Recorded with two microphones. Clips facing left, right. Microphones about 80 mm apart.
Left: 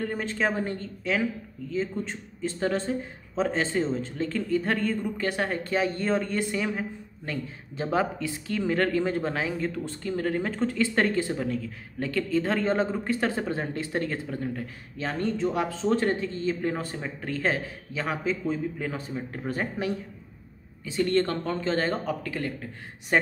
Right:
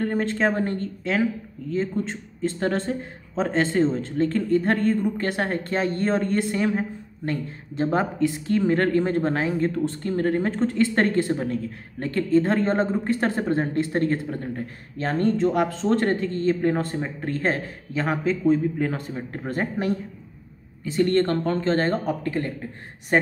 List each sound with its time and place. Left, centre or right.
0.0 s speech: right
17.0 s speech: right